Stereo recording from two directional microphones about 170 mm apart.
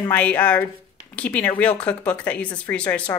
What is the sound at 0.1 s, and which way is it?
A woman's voice, 10° left (ahead or behind).